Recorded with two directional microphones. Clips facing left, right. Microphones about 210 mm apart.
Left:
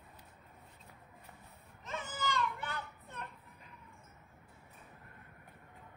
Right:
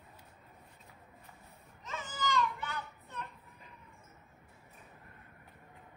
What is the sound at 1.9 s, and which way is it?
Baby cry, 55° left (ahead or behind).